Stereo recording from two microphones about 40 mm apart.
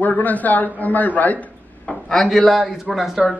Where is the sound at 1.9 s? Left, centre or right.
Centre.